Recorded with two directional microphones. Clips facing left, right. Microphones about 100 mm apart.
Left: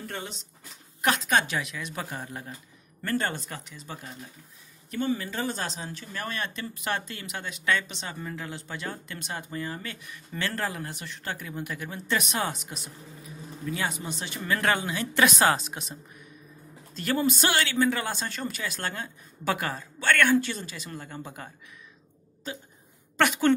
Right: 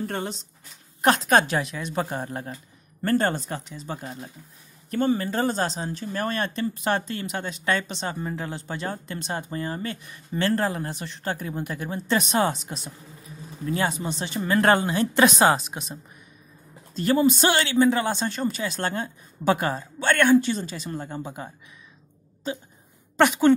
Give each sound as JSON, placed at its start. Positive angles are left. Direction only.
{"t": 0.0, "sound": "speech", "side_deg": -40}
{"t": 4.9, "sound": "speech", "side_deg": -45}
{"t": 21.2, "sound": "speech", "side_deg": -20}
{"t": 23.1, "sound": "a woman's voice", "side_deg": -20}